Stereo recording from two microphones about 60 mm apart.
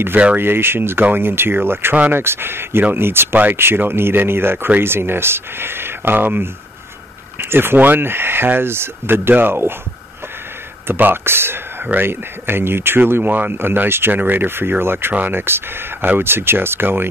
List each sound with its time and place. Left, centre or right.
0.4 s speech: right
10.9 s speech: right